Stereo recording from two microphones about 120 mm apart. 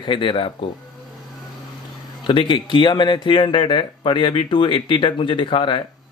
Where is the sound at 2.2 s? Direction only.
45° left (ahead or behind).